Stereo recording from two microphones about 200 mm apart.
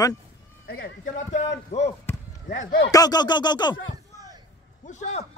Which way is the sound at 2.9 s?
20° left (ahead or behind).